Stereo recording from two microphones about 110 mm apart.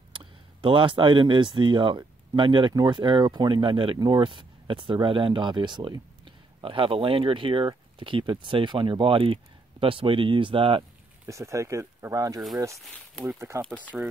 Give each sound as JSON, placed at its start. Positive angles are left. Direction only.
{"t": 0.1, "sound": "speech", "side_deg": -50}
{"t": 11.2, "sound": "speech", "side_deg": -30}